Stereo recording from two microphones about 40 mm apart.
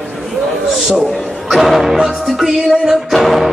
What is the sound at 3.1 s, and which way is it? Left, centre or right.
Music, centre.